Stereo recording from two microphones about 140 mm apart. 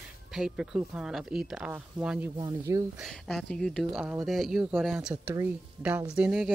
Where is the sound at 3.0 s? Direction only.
Centre (ahead or behind).